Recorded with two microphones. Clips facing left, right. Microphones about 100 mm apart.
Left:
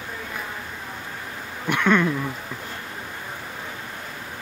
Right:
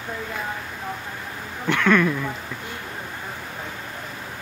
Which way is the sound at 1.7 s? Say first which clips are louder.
Right 1 dB; 20° left (ahead or behind).